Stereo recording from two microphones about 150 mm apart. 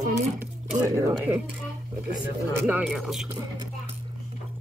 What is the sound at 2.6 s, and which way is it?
Speech, 10° right (ahead or behind).